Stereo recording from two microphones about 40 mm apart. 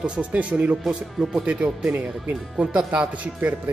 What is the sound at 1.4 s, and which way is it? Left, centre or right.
Speech, right.